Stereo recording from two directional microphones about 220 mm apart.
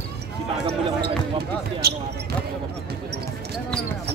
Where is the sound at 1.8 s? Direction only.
45° right (ahead or behind).